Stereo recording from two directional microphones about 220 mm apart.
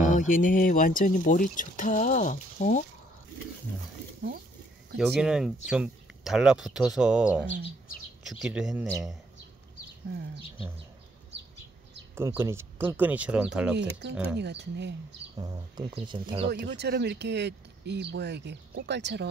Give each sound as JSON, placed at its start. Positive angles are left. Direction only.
{"t": 0.0, "sound": "speech", "side_deg": 35}
{"t": 4.9, "sound": "speech", "side_deg": -5}
{"t": 12.2, "sound": "speech", "side_deg": -10}
{"t": 14.0, "sound": "speech", "side_deg": -50}
{"t": 15.3, "sound": "speech", "side_deg": -20}
{"t": 16.4, "sound": "speech", "side_deg": -45}